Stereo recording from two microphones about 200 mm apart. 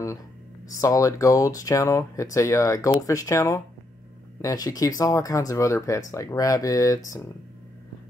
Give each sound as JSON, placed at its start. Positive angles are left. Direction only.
{"t": 0.7, "sound": "speech", "side_deg": 15}